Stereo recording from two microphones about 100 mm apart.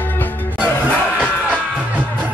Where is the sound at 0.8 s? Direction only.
10° left (ahead or behind).